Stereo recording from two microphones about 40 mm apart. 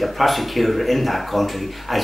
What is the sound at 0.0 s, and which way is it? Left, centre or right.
Speech, centre.